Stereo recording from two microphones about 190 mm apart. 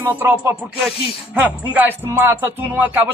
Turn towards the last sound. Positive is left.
turn(degrees=-10)  # may be behind; listen again after turning